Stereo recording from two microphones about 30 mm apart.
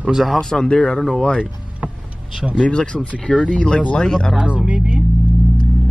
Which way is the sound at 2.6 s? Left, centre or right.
Left.